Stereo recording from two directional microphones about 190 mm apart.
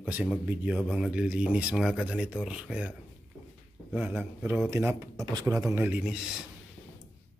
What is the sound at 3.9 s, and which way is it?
Speech, 10° right (ahead or behind).